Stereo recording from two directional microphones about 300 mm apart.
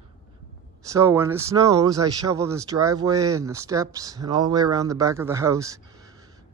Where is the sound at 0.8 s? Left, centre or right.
Centre.